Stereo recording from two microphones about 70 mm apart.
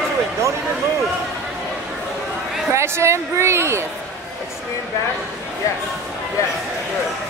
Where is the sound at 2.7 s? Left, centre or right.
Right.